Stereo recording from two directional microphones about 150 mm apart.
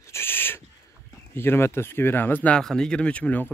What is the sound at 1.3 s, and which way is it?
Speech, 15° left (ahead or behind).